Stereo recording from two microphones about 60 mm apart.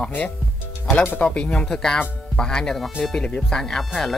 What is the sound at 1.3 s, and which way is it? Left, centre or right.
Speech, centre.